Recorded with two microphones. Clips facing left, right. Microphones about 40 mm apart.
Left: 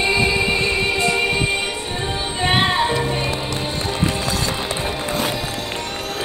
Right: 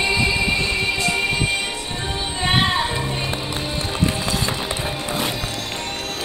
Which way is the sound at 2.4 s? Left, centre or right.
Left.